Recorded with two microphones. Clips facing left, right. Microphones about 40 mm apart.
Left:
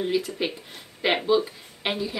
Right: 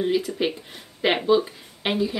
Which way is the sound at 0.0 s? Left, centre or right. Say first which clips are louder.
Right 3 dB; centre.